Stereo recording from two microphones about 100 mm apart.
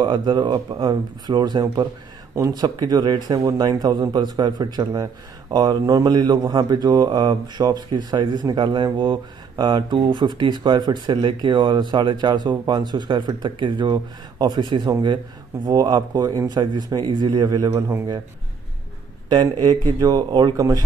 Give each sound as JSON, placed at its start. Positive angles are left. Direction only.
{"t": 0.0, "sound": "a man's voice", "side_deg": -50}
{"t": 19.2, "sound": "a man's voice", "side_deg": -45}
{"t": 20.5, "sound": "speech", "side_deg": -35}